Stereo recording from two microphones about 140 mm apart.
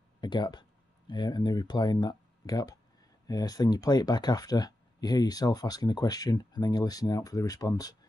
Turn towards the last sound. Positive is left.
turn(degrees=25)  # may be behind; listen again after turning